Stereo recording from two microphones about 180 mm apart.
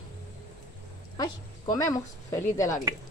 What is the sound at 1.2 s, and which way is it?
A woman's voice, 20° left (ahead or behind).